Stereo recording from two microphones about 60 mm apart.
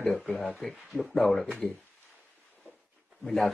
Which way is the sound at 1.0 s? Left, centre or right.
Centre.